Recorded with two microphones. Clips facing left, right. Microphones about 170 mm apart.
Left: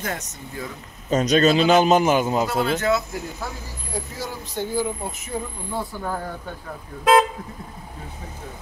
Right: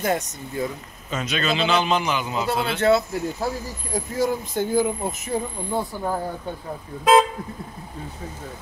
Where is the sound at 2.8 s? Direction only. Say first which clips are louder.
Right 4 dB; 30° right (ahead or behind).